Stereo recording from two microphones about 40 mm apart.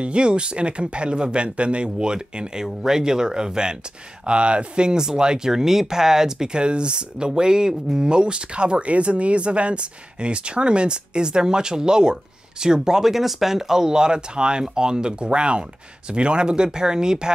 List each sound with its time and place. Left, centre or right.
0.0 s speech: right